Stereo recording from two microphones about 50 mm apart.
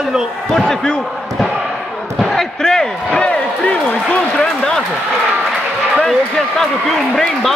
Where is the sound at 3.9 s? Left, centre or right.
Left.